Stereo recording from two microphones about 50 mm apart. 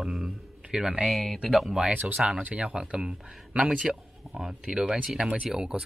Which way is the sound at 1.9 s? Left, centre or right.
Right.